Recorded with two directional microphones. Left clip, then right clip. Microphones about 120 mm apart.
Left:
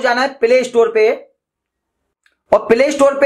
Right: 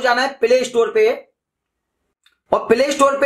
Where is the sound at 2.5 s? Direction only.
20° left (ahead or behind).